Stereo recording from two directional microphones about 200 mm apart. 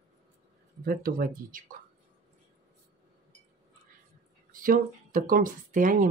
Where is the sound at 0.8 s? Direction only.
45° right (ahead or behind).